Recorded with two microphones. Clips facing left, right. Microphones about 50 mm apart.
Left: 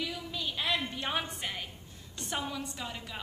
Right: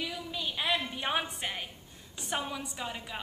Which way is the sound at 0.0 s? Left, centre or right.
Centre.